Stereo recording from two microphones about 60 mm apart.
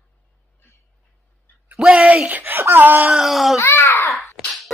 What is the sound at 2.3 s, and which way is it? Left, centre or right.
Speech, right.